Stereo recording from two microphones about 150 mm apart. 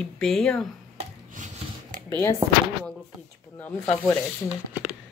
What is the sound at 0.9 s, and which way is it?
Rub, 55° right (ahead or behind).